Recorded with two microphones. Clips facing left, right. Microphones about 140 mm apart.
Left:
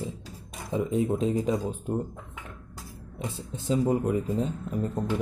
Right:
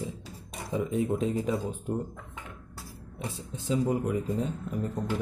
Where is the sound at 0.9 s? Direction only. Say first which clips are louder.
Left 3 dB; 25° left (ahead or behind).